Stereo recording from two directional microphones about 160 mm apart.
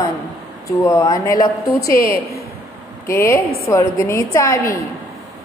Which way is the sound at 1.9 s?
65° left (ahead or behind).